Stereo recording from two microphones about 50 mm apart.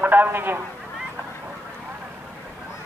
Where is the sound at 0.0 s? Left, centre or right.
Right.